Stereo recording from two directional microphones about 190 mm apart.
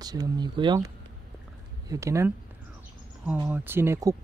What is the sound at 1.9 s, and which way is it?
Speech, 15° right (ahead or behind).